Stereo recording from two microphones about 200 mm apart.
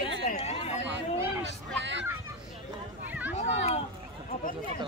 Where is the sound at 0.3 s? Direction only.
35° left (ahead or behind).